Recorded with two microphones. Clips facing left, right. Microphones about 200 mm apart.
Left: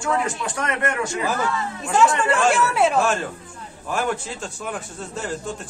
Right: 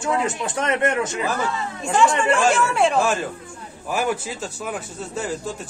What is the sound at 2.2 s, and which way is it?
A man's voice, centre (ahead or behind).